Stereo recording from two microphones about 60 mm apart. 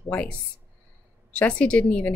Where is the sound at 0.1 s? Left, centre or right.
Left.